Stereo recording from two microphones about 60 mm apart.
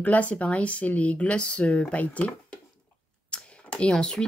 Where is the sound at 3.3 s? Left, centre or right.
Centre.